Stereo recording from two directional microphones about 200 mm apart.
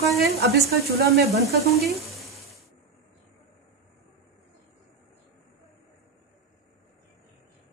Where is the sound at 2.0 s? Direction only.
Centre (ahead or behind).